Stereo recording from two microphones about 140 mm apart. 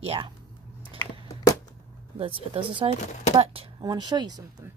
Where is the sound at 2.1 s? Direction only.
40° right (ahead or behind).